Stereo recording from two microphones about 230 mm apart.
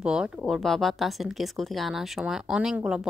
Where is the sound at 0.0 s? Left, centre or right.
Centre.